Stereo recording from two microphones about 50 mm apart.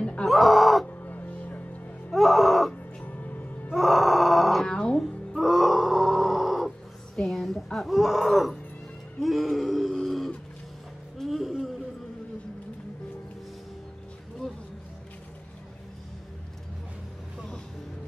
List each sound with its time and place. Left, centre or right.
0.3 s music: centre
0.8 s crow: left
2.0 s music: centre
2.7 s music: left
3.7 s grunt: centre
4.6 s music: centre
4.9 s music: centre
7.2 s a sound: centre
11.1 s music: centre